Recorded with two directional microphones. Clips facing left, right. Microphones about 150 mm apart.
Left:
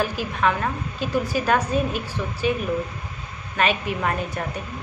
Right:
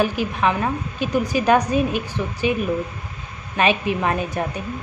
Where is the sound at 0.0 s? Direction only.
15° right (ahead or behind).